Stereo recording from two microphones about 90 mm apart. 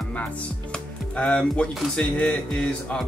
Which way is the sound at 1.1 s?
10° left (ahead or behind).